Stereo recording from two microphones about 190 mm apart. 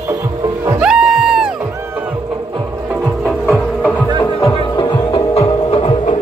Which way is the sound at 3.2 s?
Centre (ahead or behind).